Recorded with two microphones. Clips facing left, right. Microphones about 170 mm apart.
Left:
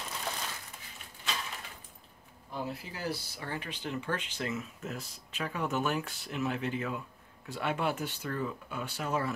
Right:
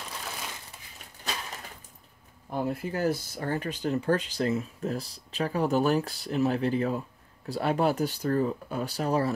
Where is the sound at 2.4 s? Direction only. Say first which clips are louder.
Right 8 dB; 50° right (ahead or behind).